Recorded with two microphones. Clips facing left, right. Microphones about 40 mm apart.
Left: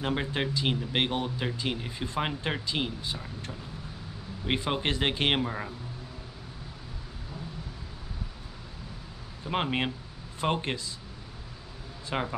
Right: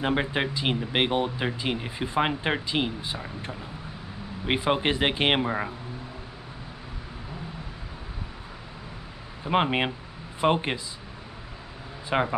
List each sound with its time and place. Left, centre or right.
0.0 s speech: right
9.4 s speech: right
12.1 s speech: centre